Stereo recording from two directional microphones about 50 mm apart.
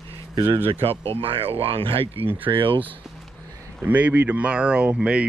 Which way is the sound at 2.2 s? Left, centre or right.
Right.